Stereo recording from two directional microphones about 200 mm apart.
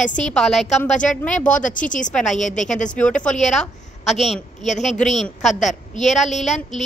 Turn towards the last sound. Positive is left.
turn(degrees=0)  # may be behind; listen again after turning